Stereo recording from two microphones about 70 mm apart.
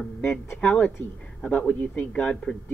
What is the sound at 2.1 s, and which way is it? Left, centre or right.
Speech, centre.